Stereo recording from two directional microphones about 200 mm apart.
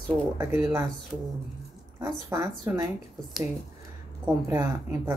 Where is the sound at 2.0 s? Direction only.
15° right (ahead or behind).